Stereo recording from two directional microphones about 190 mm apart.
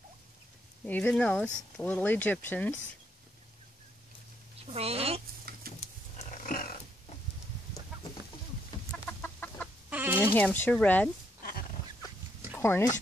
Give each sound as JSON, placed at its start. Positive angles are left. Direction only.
{"t": 0.8, "sound": "speech", "side_deg": 5}
{"t": 4.6, "sound": "speech", "side_deg": -30}
{"t": 5.7, "sound": "a sound", "side_deg": -50}
{"t": 6.4, "sound": "roaring cats", "side_deg": 50}
{"t": 9.2, "sound": "chicken", "side_deg": 10}
{"t": 9.8, "sound": "chicken", "side_deg": -10}
{"t": 10.3, "sound": "speech", "side_deg": 10}
{"t": 12.5, "sound": "speech", "side_deg": 10}